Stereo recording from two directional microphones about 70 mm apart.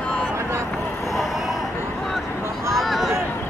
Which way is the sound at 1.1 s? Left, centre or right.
Centre.